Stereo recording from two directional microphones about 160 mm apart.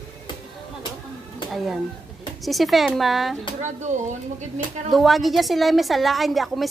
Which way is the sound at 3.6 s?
50° right (ahead or behind).